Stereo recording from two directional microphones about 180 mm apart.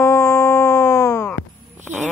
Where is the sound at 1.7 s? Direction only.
10° right (ahead or behind).